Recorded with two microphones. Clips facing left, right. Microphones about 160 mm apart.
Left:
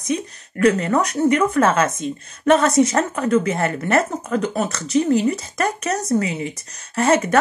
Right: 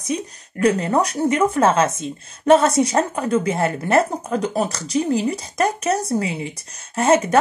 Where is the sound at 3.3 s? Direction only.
10° right (ahead or behind).